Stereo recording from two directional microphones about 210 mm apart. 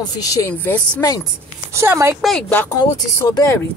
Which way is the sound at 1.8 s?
10° right (ahead or behind).